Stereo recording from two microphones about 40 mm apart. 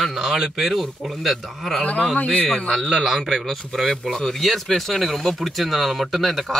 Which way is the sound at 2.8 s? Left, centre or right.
Centre.